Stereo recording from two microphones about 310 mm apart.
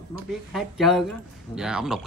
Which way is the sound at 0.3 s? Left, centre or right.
Centre.